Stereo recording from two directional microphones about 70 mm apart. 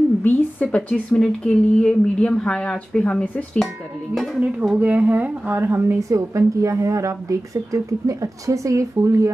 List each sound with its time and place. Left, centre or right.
0.2 s a woman's voice: left
4.1 s speech: centre
4.4 s speech: right
5.6 s a woman's voice: right
5.9 s speech: right